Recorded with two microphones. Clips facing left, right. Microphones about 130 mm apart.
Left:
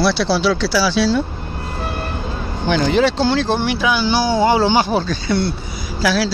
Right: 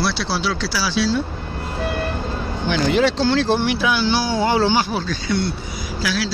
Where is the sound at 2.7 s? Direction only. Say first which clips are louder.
Left 3 dB; 35° left (ahead or behind).